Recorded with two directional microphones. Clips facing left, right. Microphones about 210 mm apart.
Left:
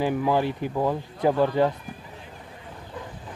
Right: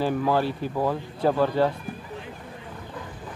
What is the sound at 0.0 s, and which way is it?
Speech, 15° left (ahead or behind).